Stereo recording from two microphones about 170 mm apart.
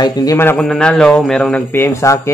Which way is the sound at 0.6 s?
5° left (ahead or behind).